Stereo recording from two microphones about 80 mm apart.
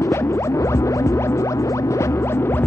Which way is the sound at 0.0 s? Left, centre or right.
Left.